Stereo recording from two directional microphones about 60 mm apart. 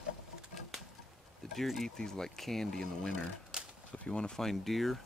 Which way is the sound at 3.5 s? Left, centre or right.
Centre.